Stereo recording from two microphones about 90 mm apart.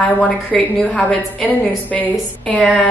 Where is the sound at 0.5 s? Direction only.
15° left (ahead or behind).